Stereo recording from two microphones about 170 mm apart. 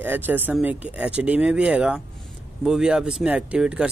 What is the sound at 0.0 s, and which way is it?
Speech, 10° right (ahead or behind).